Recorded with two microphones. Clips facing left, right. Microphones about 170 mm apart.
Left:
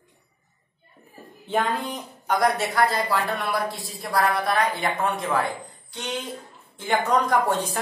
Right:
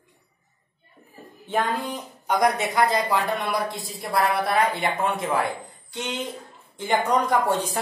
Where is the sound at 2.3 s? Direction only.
15° right (ahead or behind).